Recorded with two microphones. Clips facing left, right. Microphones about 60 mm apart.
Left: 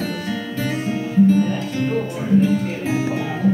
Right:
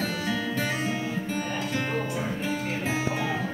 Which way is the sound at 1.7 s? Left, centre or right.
Centre.